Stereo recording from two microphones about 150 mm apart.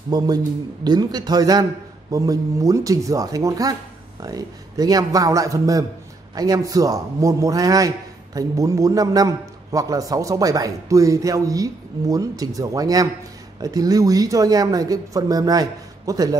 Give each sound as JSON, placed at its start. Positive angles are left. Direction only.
{"t": 0.1, "sound": "a man's voice", "side_deg": -25}